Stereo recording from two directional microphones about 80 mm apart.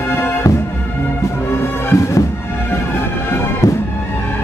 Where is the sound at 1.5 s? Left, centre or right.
Left.